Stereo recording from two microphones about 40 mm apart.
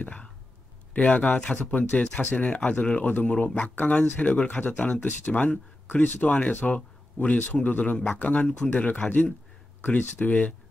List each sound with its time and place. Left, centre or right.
0.0 s speech: left
3.1 s speech: left